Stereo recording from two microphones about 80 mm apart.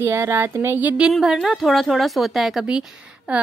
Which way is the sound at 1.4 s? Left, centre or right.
Centre.